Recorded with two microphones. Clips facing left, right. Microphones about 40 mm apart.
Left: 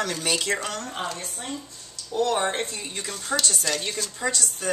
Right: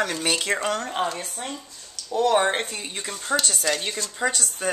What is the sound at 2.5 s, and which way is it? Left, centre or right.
Speech, right.